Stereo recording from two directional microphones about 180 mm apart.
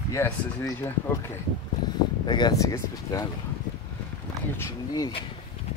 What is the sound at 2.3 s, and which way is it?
Speech, 25° left (ahead or behind).